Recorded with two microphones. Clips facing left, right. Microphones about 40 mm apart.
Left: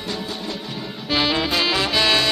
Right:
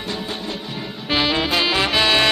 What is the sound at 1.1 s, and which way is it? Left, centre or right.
Music, centre.